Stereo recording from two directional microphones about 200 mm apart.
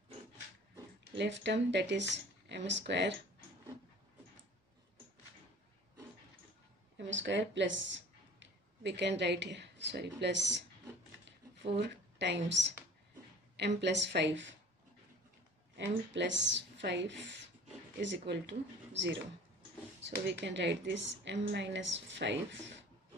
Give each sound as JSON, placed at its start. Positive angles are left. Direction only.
{"t": 1.1, "sound": "a woman's voice", "side_deg": -60}
{"t": 7.0, "sound": "speech", "side_deg": -65}
{"t": 11.8, "sound": "a woman's voice", "side_deg": -60}
{"t": 15.7, "sound": "a woman's voice", "side_deg": -60}
{"t": 20.2, "sound": "a woman's voice", "side_deg": -60}